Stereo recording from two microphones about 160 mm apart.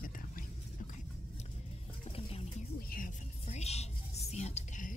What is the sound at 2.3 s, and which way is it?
Music, 40° left (ahead or behind).